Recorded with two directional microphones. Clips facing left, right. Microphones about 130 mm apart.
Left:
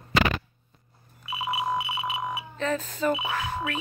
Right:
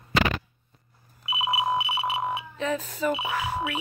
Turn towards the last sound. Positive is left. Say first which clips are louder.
# right 1 dB
turn(degrees=-10)  # may be behind; listen again after turning